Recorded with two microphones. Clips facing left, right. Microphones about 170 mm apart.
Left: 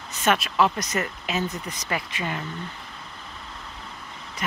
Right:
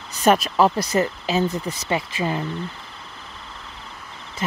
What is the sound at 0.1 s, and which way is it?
Speech, 35° right (ahead or behind).